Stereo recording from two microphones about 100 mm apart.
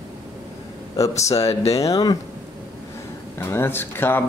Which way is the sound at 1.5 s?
90° left.